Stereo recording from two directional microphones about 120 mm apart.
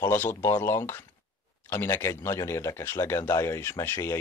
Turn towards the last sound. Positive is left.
turn(degrees=20)  # may be behind; listen again after turning